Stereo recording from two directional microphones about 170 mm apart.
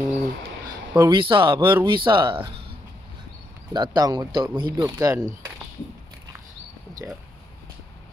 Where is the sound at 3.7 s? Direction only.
25° right (ahead or behind).